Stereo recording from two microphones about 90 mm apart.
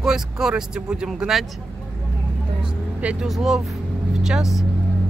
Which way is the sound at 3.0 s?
15° right (ahead or behind).